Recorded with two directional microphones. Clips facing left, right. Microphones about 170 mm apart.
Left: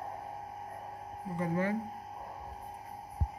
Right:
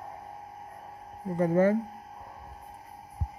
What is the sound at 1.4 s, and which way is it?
Speech, 45° right (ahead or behind).